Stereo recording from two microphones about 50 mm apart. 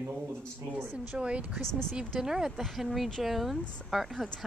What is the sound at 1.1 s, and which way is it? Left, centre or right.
Speech, right.